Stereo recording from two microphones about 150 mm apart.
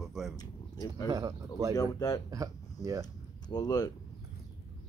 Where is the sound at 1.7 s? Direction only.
25° left (ahead or behind).